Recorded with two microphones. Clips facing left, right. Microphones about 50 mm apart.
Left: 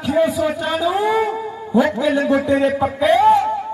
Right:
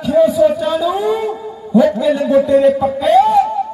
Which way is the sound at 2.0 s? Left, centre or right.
Left.